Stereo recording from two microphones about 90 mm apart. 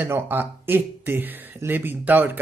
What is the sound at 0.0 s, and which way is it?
Speech, 25° right (ahead or behind).